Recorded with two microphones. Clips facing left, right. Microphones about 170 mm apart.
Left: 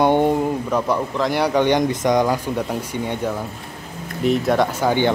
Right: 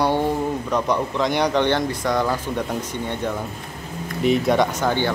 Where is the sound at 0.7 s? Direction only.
5° left (ahead or behind).